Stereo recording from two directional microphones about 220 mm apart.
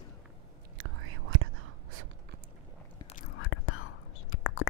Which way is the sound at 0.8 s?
65° right (ahead or behind).